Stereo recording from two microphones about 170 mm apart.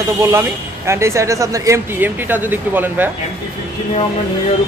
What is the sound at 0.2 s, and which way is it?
A man's voice, 15° right (ahead or behind).